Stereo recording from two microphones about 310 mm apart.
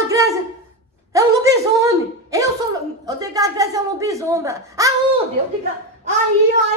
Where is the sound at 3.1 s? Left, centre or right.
Centre.